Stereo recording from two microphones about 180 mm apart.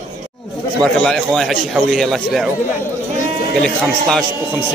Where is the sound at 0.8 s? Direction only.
5° left (ahead or behind).